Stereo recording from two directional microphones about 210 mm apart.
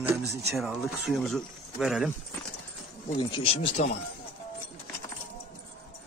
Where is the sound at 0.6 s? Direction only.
Centre (ahead or behind).